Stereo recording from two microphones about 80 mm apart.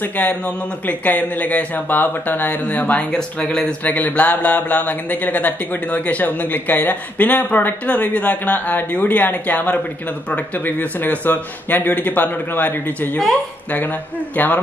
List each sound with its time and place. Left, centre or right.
0.0 s speech: left